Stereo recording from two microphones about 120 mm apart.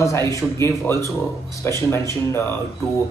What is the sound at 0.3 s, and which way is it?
Speech, 25° left (ahead or behind).